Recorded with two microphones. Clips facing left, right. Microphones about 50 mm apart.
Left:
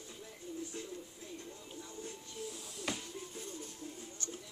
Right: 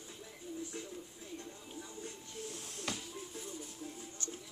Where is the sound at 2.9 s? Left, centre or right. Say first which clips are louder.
Left 2 dB; centre.